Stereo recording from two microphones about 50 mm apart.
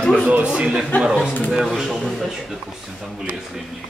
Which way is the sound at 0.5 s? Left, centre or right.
Centre.